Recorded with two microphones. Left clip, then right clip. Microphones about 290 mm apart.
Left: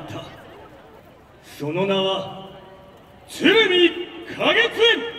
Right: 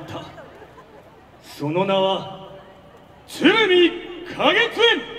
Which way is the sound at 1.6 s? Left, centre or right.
Right.